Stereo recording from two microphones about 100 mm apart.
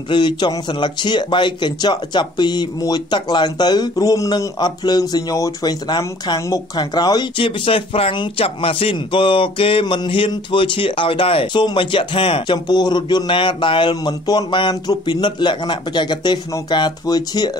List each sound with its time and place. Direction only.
0.1 s a man's voice: 50° left (ahead or behind); by 8.9 s 70° left (ahead or behind)
8.9 s a sound: 60° left (ahead or behind)
14.2 s a man's voice: 50° left (ahead or behind)